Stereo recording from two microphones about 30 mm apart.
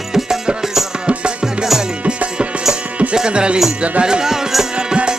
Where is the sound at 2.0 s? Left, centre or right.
Right.